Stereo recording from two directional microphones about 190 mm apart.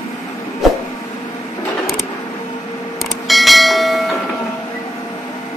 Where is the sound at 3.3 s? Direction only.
Centre (ahead or behind).